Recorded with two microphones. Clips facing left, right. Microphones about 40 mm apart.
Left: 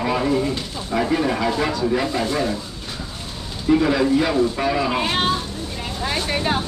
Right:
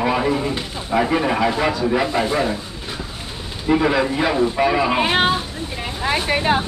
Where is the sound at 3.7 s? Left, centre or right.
Right.